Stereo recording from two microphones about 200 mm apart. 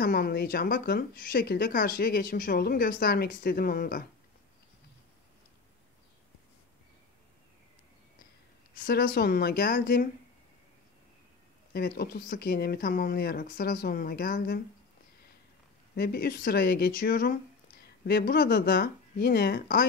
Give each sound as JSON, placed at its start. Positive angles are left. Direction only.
{"t": 0.0, "sound": "speech", "side_deg": 50}
{"t": 8.7, "sound": "speech", "side_deg": 45}
{"t": 11.7, "sound": "speech", "side_deg": 50}
{"t": 15.9, "sound": "speech", "side_deg": 50}